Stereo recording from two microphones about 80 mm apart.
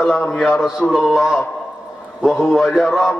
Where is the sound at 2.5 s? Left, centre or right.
Centre.